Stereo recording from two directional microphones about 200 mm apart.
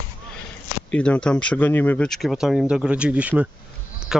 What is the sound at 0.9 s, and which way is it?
Speech, 5° left (ahead or behind).